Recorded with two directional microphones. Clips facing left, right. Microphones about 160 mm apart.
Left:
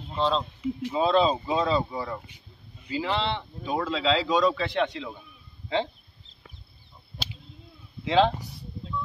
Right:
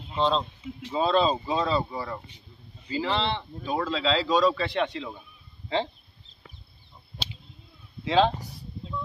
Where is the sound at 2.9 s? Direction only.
10° left (ahead or behind).